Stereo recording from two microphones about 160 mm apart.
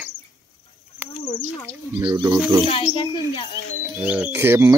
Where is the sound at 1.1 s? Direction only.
30° left (ahead or behind).